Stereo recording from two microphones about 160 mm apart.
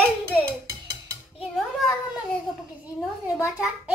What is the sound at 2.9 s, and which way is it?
Speech, 15° left (ahead or behind).